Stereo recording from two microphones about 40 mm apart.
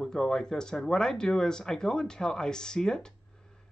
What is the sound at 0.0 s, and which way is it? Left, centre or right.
Speech, centre.